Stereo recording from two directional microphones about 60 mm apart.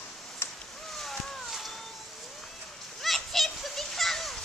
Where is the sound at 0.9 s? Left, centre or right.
Centre.